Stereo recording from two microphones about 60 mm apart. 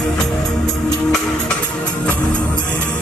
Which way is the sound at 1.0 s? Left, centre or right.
Centre.